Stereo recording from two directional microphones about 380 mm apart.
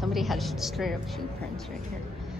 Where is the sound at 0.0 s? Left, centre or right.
Centre.